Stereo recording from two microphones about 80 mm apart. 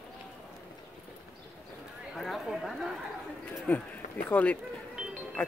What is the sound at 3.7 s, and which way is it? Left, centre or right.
Speech, left.